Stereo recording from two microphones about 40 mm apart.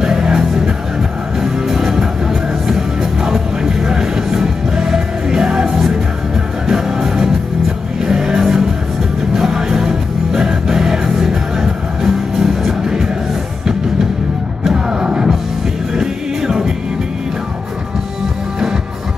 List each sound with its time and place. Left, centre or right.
0.0 s music: centre
14.6 s music: centre